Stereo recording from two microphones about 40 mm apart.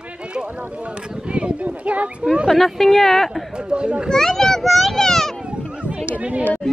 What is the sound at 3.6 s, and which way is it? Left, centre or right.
Speech, right.